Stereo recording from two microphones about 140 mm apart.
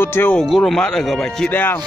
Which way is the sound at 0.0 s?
15° left (ahead or behind).